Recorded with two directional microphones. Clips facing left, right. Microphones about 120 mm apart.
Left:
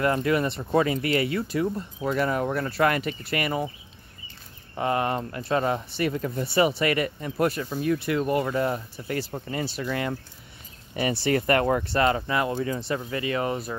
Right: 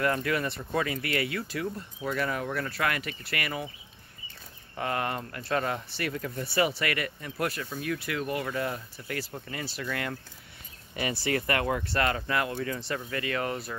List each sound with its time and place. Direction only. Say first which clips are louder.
0.0 s speech: left 5 dB; 25° left (ahead or behind)
4.7 s speech: left 6 dB; 25° left (ahead or behind)
11.0 s speech: left 5 dB; 35° left (ahead or behind)
11.9 s speech: left 5 dB; 25° left (ahead or behind)